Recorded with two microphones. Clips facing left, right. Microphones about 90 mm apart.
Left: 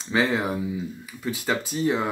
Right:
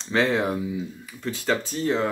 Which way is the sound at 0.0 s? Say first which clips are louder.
Right 1 dB; 5° left (ahead or behind).